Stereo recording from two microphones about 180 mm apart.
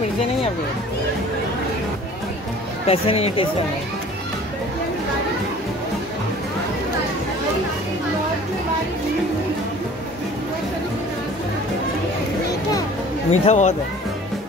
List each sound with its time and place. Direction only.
2.9 s speech: 35° left (ahead or behind)
13.3 s speech: 40° left (ahead or behind)